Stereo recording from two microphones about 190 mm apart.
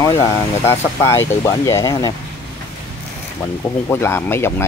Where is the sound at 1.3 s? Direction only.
15° left (ahead or behind).